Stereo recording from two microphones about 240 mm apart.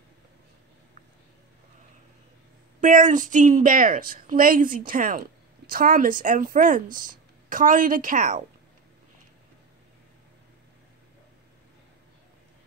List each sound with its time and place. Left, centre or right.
2.8 s speech: right